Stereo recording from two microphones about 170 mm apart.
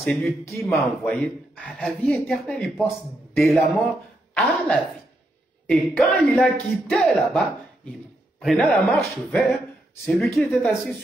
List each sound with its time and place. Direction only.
0.0 s speech: 10° left (ahead or behind)